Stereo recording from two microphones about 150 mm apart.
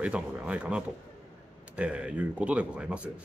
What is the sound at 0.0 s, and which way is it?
Speech, 5° right (ahead or behind).